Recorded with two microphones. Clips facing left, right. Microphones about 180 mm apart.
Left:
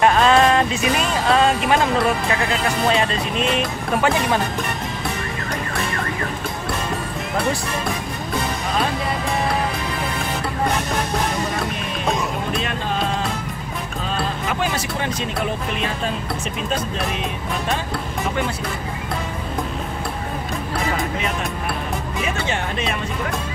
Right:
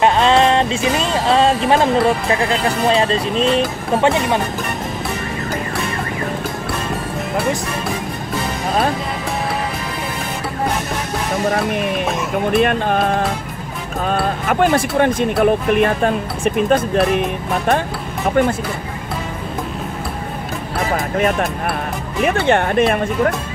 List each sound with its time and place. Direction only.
0.0 s music: 25° right (ahead or behind)
2.0 s speech: 30° right (ahead or behind)
11.5 s speech: 60° right (ahead or behind)
20.9 s speech: 55° right (ahead or behind)